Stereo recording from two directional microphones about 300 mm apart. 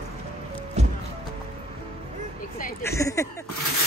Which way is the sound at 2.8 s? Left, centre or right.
Centre.